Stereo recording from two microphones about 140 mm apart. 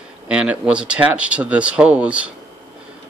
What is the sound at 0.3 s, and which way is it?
Speech, 10° right (ahead or behind).